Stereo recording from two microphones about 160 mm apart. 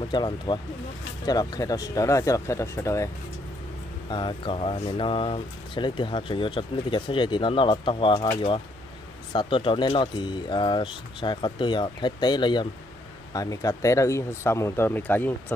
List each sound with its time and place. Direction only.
0.1 s speech: 25° left (ahead or behind)
4.1 s speech: 30° left (ahead or behind); by 15.5 s 10° left (ahead or behind)